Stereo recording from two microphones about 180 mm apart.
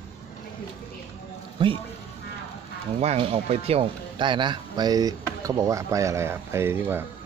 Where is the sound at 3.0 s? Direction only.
35° right (ahead or behind); by 7.0 s 15° right (ahead or behind).